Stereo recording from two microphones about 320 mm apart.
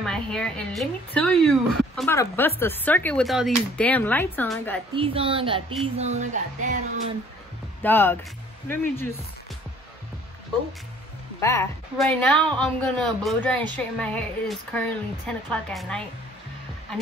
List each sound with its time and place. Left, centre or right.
0.0 s a woman's voice: centre
4.9 s speech: centre
7.8 s speech: centre
11.4 s a woman's voice: centre